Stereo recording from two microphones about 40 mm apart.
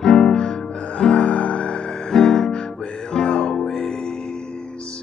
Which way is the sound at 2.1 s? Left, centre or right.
Centre.